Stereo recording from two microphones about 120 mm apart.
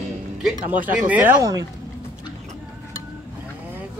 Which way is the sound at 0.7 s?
15° right (ahead or behind).